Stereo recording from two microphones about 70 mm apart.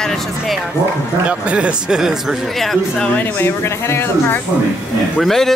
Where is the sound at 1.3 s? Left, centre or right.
Centre.